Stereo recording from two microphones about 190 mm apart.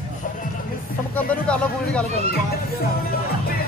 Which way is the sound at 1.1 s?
5° left (ahead or behind).